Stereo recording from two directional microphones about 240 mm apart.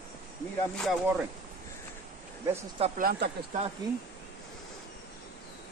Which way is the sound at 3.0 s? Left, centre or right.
Right.